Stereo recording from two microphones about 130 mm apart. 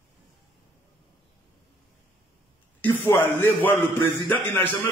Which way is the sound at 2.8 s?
15° left (ahead or behind).